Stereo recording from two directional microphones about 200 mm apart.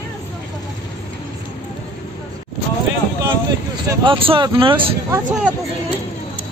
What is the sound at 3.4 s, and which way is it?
Speech, 20° right (ahead or behind).